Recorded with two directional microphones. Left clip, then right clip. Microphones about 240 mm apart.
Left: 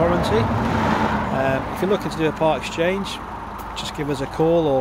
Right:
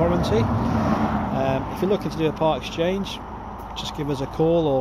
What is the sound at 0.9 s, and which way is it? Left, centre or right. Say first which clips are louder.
Vehicle: left 4 dB; left.